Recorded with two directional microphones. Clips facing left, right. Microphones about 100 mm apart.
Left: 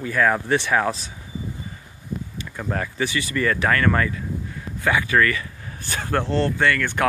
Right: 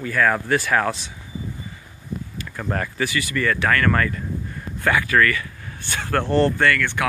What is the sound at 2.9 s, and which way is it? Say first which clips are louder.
Speech: even; 25° left (ahead or behind).